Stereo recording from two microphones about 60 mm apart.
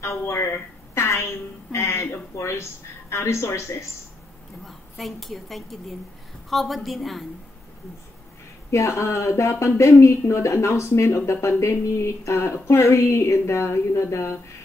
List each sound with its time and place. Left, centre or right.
0.0 s a woman's voice: left
0.9 s a sound: left
1.7 s a woman's voice: left
4.6 s a woman's voice: centre
8.6 s a woman's voice: left